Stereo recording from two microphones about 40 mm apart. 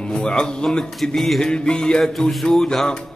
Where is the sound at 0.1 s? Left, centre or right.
Left.